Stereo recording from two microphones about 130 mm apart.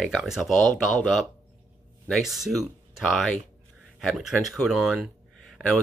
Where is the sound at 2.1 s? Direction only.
Centre (ahead or behind).